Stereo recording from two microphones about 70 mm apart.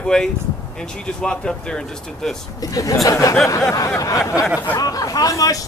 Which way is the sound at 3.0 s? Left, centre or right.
Left.